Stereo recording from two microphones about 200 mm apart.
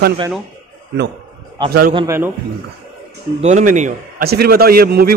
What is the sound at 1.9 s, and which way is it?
Speech, 15° right (ahead or behind).